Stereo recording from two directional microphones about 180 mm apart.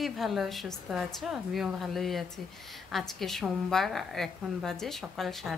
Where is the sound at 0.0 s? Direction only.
Centre (ahead or behind).